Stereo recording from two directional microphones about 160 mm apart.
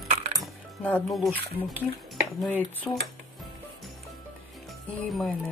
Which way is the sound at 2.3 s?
10° left (ahead or behind).